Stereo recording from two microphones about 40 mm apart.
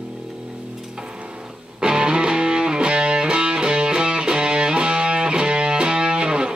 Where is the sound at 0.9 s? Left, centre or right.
Centre.